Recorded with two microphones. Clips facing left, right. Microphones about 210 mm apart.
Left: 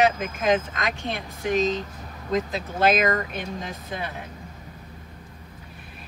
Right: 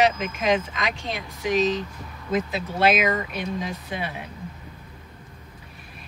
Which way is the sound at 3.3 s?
50° left (ahead or behind).